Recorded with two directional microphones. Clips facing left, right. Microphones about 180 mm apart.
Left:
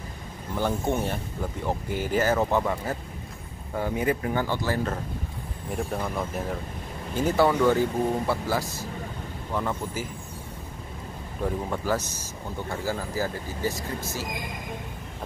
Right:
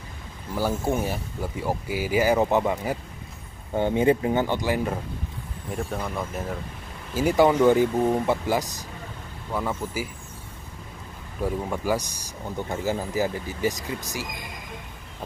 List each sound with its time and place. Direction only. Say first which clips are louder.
0.6 s speech: right 1 dB; 5° right (ahead or behind)
3.7 s speech: right 5 dB; 25° right (ahead or behind)
5.7 s speech: even; centre (ahead or behind)
7.2 s speech: right 3 dB; 15° right (ahead or behind)
9.5 s speech: right 1 dB; 5° right (ahead or behind)
11.4 s speech: right 2 dB; 10° right (ahead or behind)